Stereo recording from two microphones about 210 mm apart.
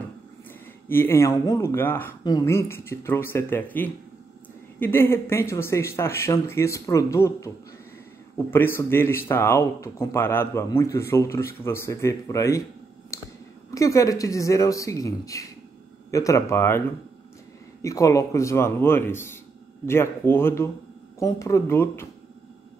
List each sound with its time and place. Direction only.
0.8 s speech: 10° left (ahead or behind)
13.1 s a sound: 15° left (ahead or behind)
13.7 s speech: 15° left (ahead or behind)
17.8 s speech: 15° left (ahead or behind)